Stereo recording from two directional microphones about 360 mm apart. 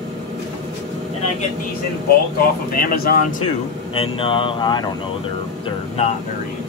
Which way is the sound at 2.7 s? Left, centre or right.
Left.